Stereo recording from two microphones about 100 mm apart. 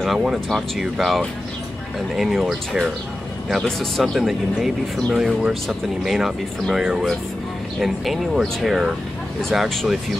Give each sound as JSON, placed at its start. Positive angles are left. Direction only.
{"t": 0.0, "sound": "speech", "side_deg": -5}